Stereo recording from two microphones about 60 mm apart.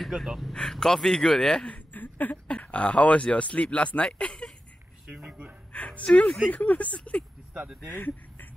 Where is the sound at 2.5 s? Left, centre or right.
Left.